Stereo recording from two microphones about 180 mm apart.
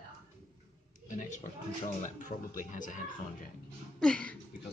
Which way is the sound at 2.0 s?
45° left (ahead or behind).